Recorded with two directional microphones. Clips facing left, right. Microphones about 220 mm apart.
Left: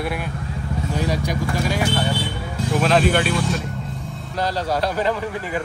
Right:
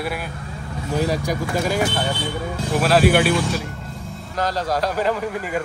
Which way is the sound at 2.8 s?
5° right (ahead or behind).